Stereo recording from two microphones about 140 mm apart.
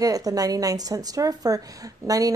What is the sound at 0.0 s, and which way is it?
A woman's voice, 25° right (ahead or behind).